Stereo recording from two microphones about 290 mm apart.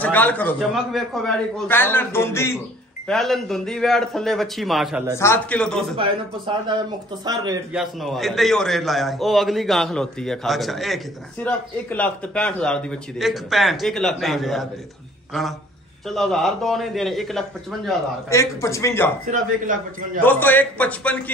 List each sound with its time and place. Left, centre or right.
0.0 s a man's voice: centre
5.9 s speech: centre
7.7 s a man's voice: centre
16.1 s a man's voice: centre
19.3 s speech: right
20.2 s a man's voice: centre